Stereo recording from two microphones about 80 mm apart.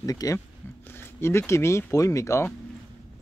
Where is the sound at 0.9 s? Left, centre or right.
Left.